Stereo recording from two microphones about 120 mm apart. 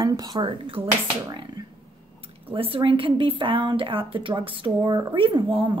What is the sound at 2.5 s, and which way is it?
A woman's voice, 50° right (ahead or behind).